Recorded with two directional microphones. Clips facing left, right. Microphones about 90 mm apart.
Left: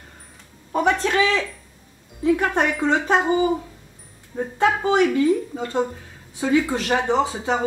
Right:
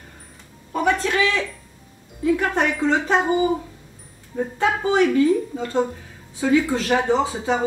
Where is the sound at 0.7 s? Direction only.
20° left (ahead or behind).